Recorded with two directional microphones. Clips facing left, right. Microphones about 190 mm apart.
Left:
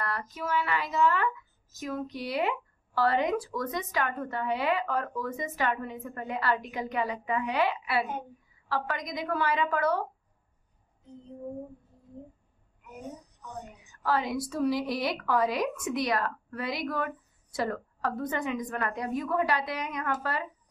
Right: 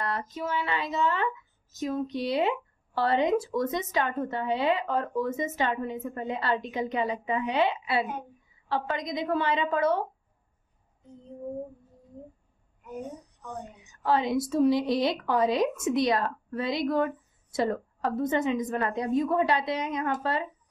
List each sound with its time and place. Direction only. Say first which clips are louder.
0.0 s a woman's voice: right 3 dB; 25° right (ahead or behind)
13.8 s a woman's voice: right 3 dB; 25° right (ahead or behind)